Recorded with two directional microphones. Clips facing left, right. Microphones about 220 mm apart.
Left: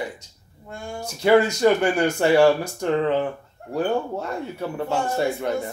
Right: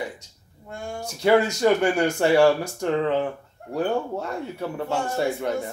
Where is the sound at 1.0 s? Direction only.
Centre (ahead or behind).